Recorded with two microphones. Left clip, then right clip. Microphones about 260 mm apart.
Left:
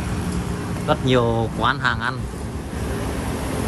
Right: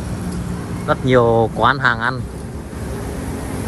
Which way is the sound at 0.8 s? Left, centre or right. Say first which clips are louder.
Right 4 dB; centre.